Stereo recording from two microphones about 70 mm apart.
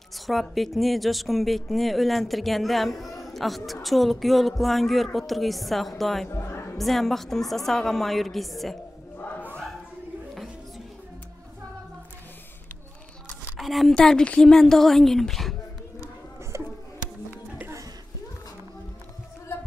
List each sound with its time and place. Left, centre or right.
0.3 s speech: centre
6.3 s music: left
6.8 s speech: centre
13.6 s speech: centre
13.9 s a woman's voice: centre
16.5 s a sound: right
17.3 s music: right